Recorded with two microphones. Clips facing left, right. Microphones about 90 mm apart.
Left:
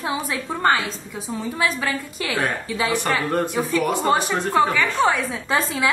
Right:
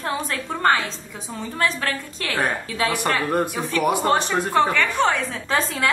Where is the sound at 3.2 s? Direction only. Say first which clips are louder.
Left 1 dB; 10° right (ahead or behind).